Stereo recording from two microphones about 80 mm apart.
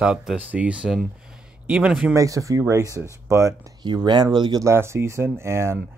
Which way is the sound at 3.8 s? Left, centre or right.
Right.